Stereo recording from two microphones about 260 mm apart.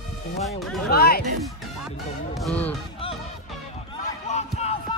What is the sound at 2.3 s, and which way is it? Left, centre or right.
Speech, centre.